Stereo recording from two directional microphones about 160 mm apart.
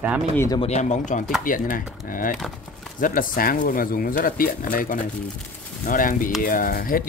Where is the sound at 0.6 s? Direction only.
45° left (ahead or behind).